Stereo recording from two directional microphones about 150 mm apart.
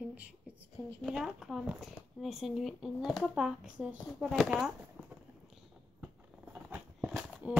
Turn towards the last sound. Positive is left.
turn(degrees=-10)  # may be behind; listen again after turning